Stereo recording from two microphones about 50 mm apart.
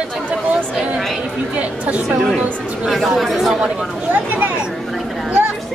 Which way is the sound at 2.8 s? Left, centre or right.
Centre.